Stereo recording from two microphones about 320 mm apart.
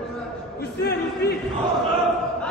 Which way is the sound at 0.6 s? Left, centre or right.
Left.